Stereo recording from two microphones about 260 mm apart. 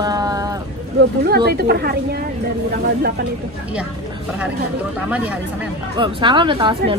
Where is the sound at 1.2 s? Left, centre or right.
Right.